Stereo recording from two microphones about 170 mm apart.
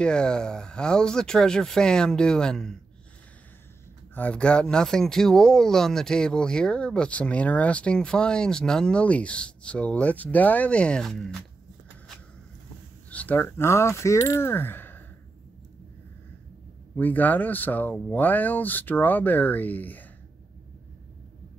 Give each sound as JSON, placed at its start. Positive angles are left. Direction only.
{"t": 0.0, "sound": "speech", "side_deg": 5}
{"t": 4.1, "sound": "speech", "side_deg": 10}
{"t": 13.1, "sound": "speech", "side_deg": 10}
{"t": 16.9, "sound": "speech", "side_deg": 10}